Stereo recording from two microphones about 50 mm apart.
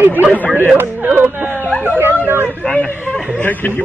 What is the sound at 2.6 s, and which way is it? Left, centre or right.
Speech, centre.